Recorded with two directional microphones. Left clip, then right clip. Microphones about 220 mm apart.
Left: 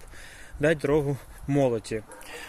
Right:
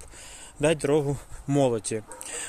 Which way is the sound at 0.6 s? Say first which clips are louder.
Even; 5° right (ahead or behind).